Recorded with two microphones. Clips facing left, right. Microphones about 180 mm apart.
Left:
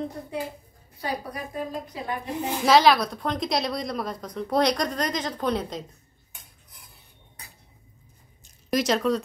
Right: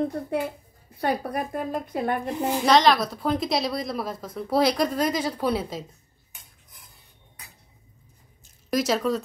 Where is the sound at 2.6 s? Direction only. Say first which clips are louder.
Left 1 dB; 5° left (ahead or behind).